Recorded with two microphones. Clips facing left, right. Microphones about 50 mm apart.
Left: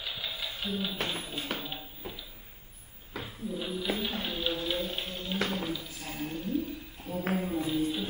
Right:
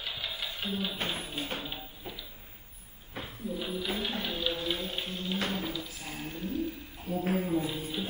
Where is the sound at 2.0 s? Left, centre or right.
Centre.